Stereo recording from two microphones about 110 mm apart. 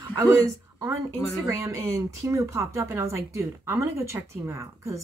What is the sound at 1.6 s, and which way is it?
A woman's voice, 25° right (ahead or behind).